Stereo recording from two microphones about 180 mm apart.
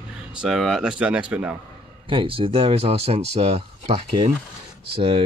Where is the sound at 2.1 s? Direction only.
30° right (ahead or behind).